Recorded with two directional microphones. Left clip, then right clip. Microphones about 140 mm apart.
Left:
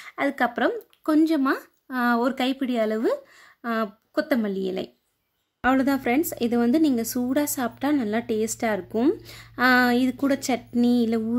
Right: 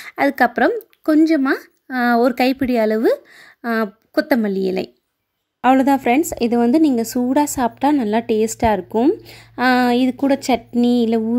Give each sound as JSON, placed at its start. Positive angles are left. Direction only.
{"t": 0.0, "sound": "a woman's voice", "side_deg": -40}
{"t": 8.9, "sound": "speech", "side_deg": -5}
{"t": 9.3, "sound": "speech", "side_deg": -20}